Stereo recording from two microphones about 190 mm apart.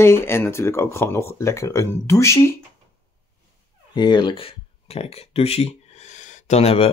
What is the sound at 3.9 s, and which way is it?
Speech, 25° left (ahead or behind).